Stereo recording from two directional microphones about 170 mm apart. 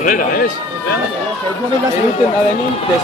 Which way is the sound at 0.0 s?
55° left (ahead or behind).